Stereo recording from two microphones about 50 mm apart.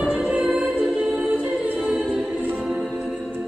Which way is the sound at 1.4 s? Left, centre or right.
Right.